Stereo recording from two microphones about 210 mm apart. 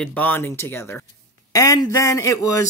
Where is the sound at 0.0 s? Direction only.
10° left (ahead or behind).